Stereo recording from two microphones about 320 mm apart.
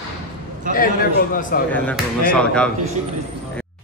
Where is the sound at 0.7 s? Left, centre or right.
Left.